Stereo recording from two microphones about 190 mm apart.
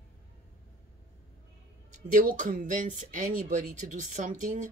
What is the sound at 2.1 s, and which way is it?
Speech, 45° right (ahead or behind).